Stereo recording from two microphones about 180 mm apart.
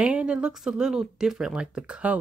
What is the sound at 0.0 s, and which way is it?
Speech, 5° right (ahead or behind).